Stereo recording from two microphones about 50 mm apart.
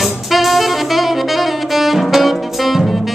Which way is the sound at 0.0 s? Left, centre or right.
Centre.